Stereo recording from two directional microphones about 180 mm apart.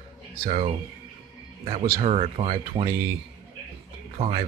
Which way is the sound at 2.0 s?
35° right (ahead or behind).